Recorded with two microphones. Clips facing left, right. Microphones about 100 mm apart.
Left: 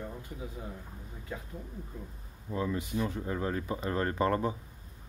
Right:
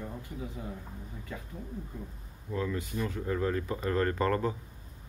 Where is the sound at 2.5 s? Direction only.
20° left (ahead or behind).